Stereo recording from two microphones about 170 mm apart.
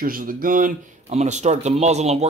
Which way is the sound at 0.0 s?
55° right (ahead or behind).